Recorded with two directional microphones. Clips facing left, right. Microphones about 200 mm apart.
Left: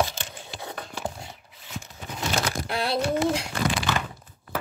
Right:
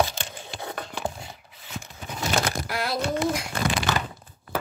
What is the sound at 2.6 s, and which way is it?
Speech, 30° left (ahead or behind).